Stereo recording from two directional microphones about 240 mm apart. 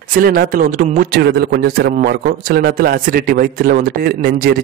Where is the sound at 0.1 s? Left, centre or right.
Right.